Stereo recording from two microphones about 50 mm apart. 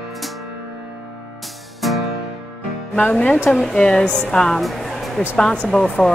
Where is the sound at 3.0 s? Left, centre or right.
Left.